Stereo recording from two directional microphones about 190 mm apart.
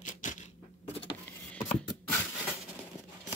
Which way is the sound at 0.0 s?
40° left (ahead or behind).